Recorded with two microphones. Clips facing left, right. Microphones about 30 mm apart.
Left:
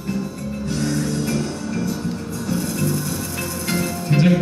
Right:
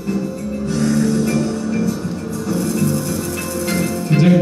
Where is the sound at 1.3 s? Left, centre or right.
Centre.